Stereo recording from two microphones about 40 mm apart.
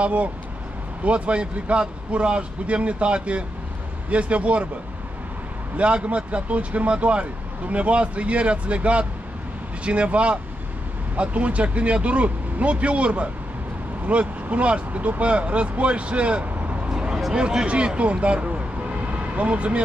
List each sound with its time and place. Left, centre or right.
0.0 s speech: right
5.8 s speech: right
17.3 s speech: right